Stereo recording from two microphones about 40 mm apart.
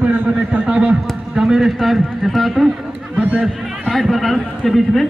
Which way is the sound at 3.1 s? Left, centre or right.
Right.